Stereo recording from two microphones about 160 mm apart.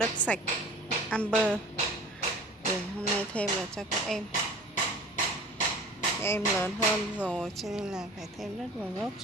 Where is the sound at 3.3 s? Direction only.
5° left (ahead or behind).